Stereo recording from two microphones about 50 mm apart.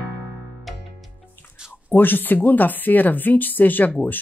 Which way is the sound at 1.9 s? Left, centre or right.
Left.